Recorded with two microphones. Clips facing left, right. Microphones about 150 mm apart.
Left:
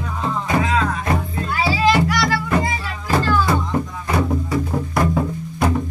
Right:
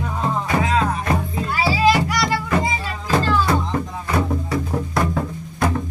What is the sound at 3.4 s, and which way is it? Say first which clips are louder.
Music: left 1 dB; 5° left (ahead or behind).